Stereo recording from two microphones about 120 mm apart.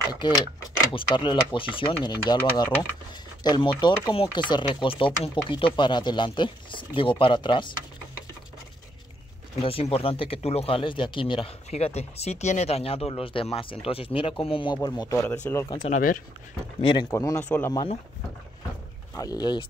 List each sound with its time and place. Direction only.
0.1 s speech: 35° left (ahead or behind)
9.6 s speech: 50° left (ahead or behind); by 15.3 s 25° left (ahead or behind)
15.8 s speech: 60° left (ahead or behind)
16.8 s speech: 40° left (ahead or behind)
17.2 s speech: 25° left (ahead or behind)
19.1 s speech: 35° left (ahead or behind)